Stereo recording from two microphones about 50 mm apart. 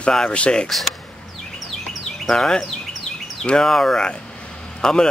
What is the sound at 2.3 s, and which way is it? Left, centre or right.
A man's voice, centre.